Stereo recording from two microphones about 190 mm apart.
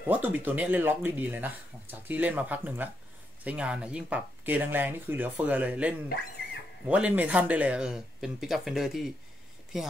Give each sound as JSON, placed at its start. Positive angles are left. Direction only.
{"t": 0.0, "sound": "speech", "side_deg": -10}